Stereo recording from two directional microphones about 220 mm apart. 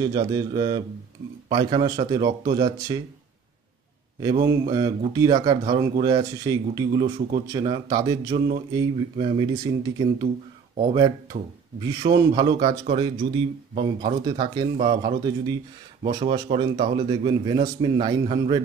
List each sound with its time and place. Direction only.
0.0 s a man's voice: 15° right (ahead or behind)
4.2 s a man's voice: 15° right (ahead or behind)